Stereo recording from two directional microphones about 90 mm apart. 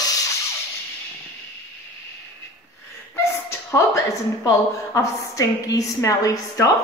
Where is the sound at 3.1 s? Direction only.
30° left (ahead or behind).